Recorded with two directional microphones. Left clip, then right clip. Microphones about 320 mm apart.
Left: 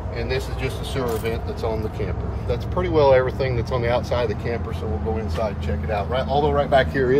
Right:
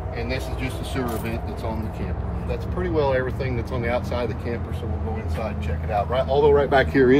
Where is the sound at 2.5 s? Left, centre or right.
Left.